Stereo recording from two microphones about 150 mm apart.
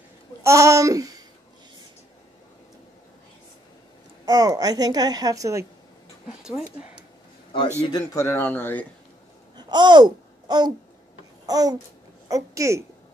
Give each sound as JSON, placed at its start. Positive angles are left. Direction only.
{"t": 0.4, "sound": "a woman's voice", "side_deg": -20}
{"t": 4.3, "sound": "a woman's voice", "side_deg": -25}
{"t": 7.8, "sound": "speech", "side_deg": 25}
{"t": 9.6, "sound": "babbling", "side_deg": -30}
{"t": 12.3, "sound": "a woman's voice", "side_deg": -20}